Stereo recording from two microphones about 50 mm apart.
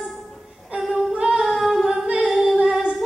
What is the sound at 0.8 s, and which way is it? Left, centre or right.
Female singing, centre.